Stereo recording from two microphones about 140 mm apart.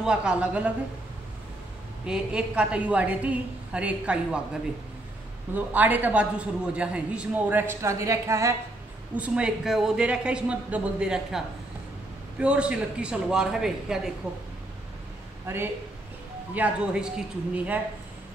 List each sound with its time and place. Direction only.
0.0 s a man's voice: 5° right (ahead or behind)
2.0 s a man's voice: 5° right (ahead or behind)
5.5 s a man's voice: 10° right (ahead or behind)
9.1 s a man's voice: 10° right (ahead or behind)
15.4 s a man's voice: 15° right (ahead or behind)